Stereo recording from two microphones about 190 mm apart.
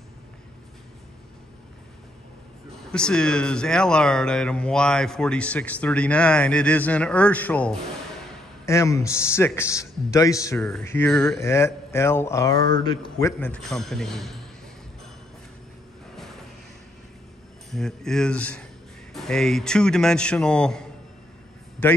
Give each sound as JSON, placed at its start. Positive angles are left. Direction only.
{"t": 2.9, "sound": "a man's voice", "side_deg": 5}
{"t": 13.4, "sound": "speech", "side_deg": 5}
{"t": 17.6, "sound": "speech", "side_deg": 0}